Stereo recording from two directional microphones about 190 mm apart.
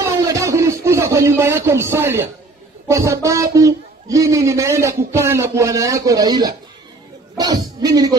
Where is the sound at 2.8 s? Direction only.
15° right (ahead or behind).